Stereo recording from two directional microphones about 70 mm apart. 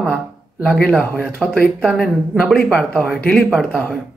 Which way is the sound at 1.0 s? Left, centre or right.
Left.